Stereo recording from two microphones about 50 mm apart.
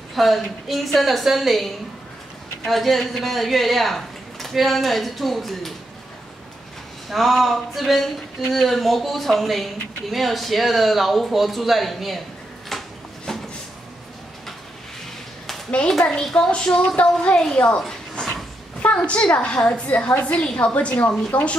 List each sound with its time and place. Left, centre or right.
0.1 s speech: centre
7.1 s speech: centre
13.3 s a sound: centre
15.9 s a child's voice: centre
20.1 s a woman's voice: left